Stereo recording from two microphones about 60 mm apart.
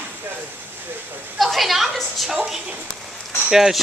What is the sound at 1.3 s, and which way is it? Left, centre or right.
Speech, centre.